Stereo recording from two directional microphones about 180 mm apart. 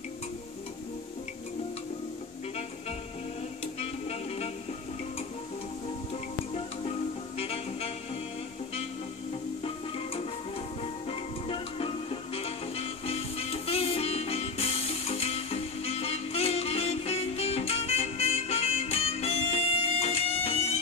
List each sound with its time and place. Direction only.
3.6 s music: 35° left (ahead or behind)
7.3 s music: 35° left (ahead or behind)
10.8 s music: 30° left (ahead or behind)